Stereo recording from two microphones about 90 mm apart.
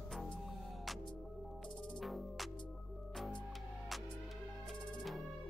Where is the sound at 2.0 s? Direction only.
Centre (ahead or behind).